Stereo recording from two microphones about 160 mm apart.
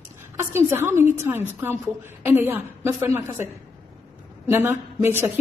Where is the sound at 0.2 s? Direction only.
15° right (ahead or behind).